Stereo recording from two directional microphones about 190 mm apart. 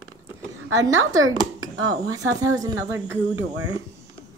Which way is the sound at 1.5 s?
90° right.